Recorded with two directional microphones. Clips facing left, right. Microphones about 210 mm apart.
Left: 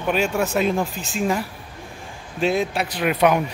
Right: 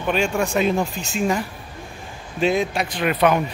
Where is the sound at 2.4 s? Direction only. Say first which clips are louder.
Right 1 dB; centre (ahead or behind).